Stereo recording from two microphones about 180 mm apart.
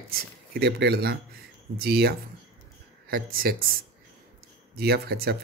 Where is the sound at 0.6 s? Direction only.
65° right (ahead or behind).